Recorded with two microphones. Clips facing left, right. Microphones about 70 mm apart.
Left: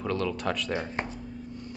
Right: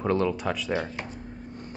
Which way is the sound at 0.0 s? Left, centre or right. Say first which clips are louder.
Right 5 dB; right.